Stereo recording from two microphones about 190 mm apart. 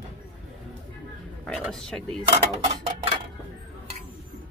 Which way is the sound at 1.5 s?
Centre (ahead or behind).